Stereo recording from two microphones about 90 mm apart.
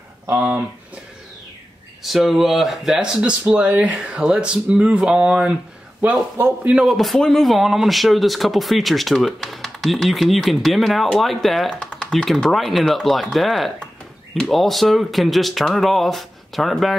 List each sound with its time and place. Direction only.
0.3 s speech: 20° right (ahead or behind)
2.0 s speech: centre (ahead or behind)
6.6 s speech: 10° right (ahead or behind)
6.9 s speech: centre (ahead or behind)